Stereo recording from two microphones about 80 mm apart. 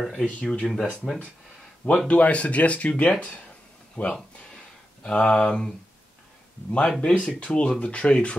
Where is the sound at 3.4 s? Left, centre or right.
Centre.